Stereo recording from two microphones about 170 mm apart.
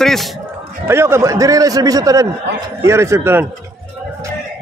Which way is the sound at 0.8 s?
15° right (ahead or behind).